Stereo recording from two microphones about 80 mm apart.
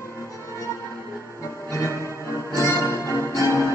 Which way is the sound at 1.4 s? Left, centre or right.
Left.